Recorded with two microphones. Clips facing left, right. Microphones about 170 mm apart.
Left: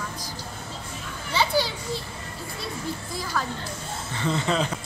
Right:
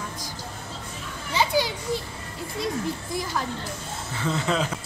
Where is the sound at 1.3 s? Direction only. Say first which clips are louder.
Even; 15° right (ahead or behind).